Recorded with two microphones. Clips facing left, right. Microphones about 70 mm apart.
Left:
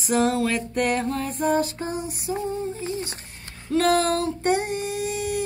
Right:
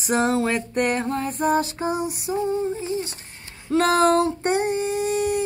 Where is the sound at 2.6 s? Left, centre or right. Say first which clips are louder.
Right 3 dB; right.